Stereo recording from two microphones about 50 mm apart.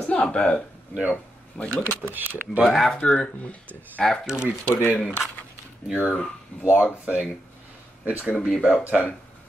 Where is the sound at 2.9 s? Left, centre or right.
Left.